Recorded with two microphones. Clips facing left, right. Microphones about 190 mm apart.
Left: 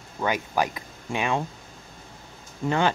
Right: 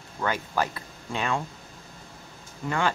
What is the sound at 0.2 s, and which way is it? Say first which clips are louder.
Speech: left 2 dB; 15° left (ahead or behind).